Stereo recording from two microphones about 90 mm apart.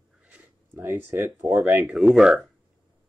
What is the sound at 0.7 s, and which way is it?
Speech, 25° right (ahead or behind).